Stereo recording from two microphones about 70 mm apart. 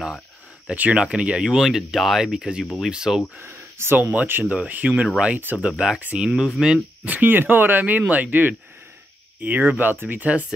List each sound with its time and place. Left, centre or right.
0.7 s speech: centre
2.6 s speech: centre
2.9 s speech: centre
3.3 s speech: right
4.0 s speech: right
7.1 s speech: right